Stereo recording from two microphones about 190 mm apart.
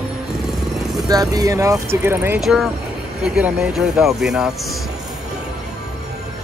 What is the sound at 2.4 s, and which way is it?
Speech, centre (ahead or behind).